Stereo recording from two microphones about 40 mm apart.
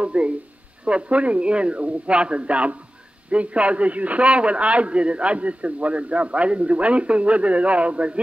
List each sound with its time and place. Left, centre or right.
0.0 s a man's voice: right